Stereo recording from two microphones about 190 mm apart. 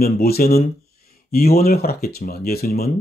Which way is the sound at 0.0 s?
55° left (ahead or behind).